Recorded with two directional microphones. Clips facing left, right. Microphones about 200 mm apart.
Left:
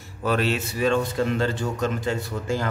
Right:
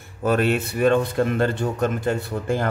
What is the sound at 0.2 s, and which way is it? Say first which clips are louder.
A man's voice: right 3 dB; 50° right (ahead or behind).